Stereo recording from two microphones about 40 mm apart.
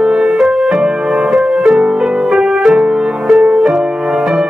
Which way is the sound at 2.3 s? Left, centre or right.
Centre.